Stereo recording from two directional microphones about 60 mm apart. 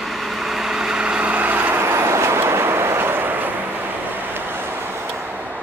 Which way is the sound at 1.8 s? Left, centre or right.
Right.